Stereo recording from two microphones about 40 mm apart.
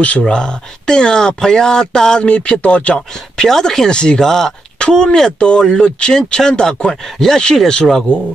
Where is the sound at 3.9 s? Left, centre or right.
Left.